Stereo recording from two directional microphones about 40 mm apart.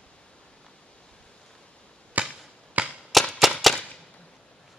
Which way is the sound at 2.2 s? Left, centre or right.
Right.